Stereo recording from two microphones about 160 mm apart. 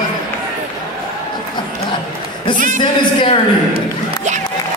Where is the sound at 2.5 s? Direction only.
55° right (ahead or behind).